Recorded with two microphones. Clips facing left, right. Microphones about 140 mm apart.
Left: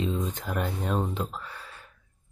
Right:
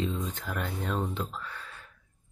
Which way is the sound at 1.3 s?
15° left (ahead or behind).